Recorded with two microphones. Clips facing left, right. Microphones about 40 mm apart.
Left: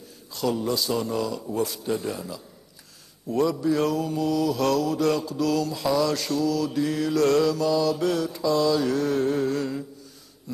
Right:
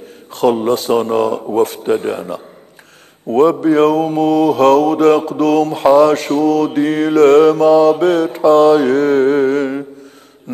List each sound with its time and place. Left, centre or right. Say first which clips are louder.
0.3 s mantra: right 12 dB; right